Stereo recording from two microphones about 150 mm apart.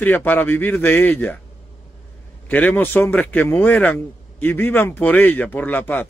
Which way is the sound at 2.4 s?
10° left (ahead or behind).